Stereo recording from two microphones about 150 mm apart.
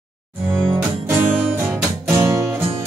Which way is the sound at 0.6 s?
5° left (ahead or behind).